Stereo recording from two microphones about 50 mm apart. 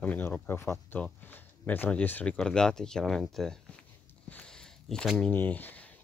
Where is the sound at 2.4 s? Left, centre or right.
Centre.